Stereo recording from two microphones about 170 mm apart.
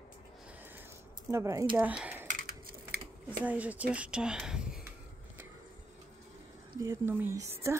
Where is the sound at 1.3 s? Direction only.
15° right (ahead or behind).